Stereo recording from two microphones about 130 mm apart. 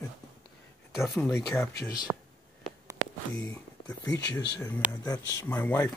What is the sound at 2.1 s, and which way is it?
Whispering, 25° right (ahead or behind).